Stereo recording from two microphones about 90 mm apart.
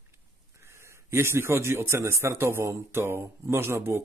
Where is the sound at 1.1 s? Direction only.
30° right (ahead or behind).